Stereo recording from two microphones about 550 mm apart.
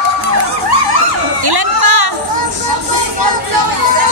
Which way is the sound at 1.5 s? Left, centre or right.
Right.